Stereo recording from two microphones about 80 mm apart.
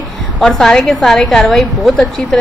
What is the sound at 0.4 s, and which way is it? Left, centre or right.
A woman's voice, centre.